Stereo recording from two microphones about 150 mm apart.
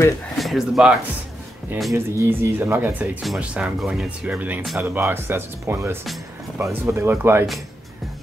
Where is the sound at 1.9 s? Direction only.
15° right (ahead or behind).